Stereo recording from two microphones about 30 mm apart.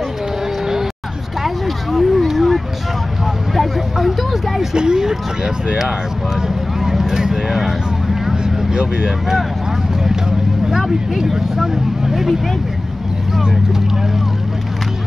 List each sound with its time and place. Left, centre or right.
1.4 s a sound: centre
3.5 s vehicle: centre
4.7 s speech: right
6.4 s vehicle: centre
8.7 s speech: right
10.7 s speech: centre